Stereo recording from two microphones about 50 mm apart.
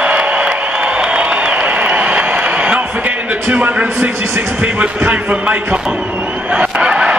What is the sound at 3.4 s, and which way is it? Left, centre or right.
Speech, right.